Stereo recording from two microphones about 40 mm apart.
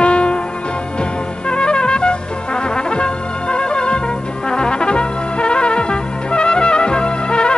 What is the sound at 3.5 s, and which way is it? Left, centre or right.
Music, left.